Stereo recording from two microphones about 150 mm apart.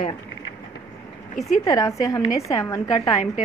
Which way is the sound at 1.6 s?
20° left (ahead or behind).